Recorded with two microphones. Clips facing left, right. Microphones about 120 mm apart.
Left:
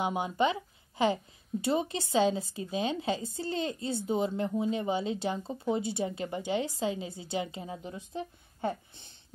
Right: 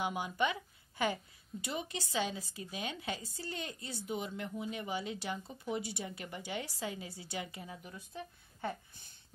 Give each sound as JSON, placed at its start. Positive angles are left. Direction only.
{"t": 0.0, "sound": "speech", "side_deg": 25}